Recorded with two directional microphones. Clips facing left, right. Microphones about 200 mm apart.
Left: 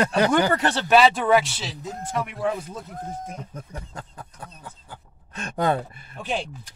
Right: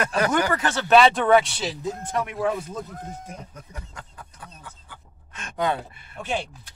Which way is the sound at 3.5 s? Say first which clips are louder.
Left 4 dB; 35° left (ahead or behind).